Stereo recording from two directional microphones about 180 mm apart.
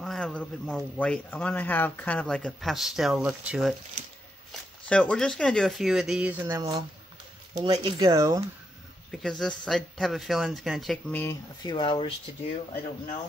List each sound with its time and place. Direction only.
0.0 s a man's voice: 5° left (ahead or behind); by 8.5 s 15° right (ahead or behind)
9.1 s speech: centre (ahead or behind)
11.6 s speech: 25° left (ahead or behind)